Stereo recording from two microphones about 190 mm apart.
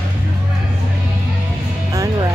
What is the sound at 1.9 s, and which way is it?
Music, 20° right (ahead or behind).